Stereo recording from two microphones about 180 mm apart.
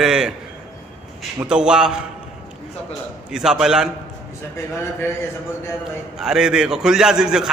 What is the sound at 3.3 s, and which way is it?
Speech, 5° right (ahead or behind).